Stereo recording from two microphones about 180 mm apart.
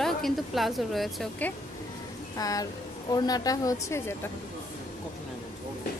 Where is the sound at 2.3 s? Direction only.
20° left (ahead or behind).